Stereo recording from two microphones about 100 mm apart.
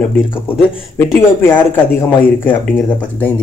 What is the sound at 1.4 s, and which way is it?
Speech, 20° left (ahead or behind).